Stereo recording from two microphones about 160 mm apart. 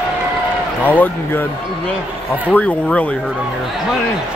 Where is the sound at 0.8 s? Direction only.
10° left (ahead or behind).